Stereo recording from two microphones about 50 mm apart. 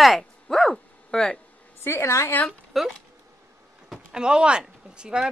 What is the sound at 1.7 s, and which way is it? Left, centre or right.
Speech, left.